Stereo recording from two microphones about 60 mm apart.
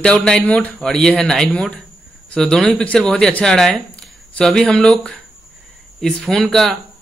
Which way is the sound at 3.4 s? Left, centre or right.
Centre.